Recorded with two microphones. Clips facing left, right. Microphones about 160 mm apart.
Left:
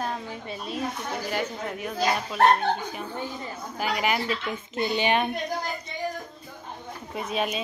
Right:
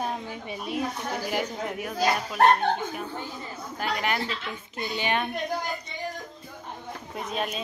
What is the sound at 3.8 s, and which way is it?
Speech, 5° left (ahead or behind).